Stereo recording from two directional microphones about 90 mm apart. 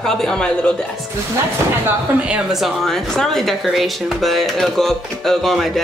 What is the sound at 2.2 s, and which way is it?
Speech, 5° right (ahead or behind).